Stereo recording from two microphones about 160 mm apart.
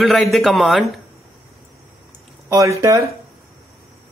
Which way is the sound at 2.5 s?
20° right (ahead or behind).